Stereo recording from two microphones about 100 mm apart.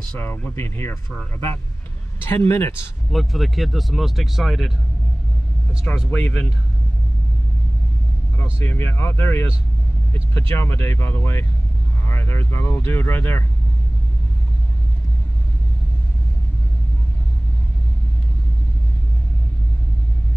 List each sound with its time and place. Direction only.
0.2 s speech: 20° left (ahead or behind)
3.1 s speech: centre (ahead or behind)
6.0 s a man's voice: 15° left (ahead or behind)
8.5 s speech: 25° left (ahead or behind)
10.5 s speech: 25° left (ahead or behind)